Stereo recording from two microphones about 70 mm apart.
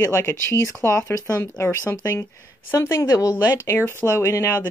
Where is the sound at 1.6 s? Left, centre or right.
Left.